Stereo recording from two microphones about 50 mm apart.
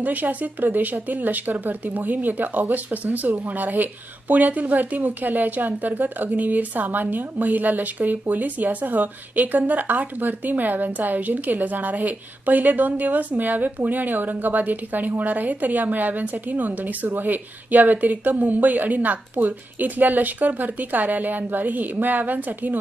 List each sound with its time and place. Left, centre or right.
0.0 s speech: right